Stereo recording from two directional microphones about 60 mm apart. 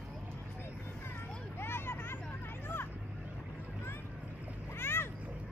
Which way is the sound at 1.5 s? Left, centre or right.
Left.